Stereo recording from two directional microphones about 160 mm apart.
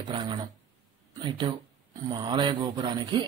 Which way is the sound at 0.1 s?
30° right (ahead or behind).